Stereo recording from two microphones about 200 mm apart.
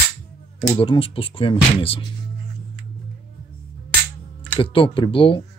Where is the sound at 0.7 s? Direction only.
25° left (ahead or behind).